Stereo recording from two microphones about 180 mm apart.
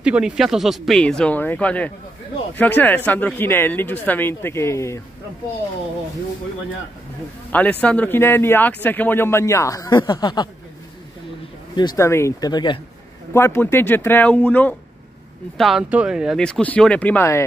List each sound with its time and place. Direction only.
0.0 s speech: 5° right (ahead or behind); by 5.0 s 15° left (ahead or behind)
7.8 s speech: 5° left (ahead or behind); by 10.5 s 25° left (ahead or behind)
11.7 s speech: 25° left (ahead or behind)
13.3 s speech: 15° left (ahead or behind)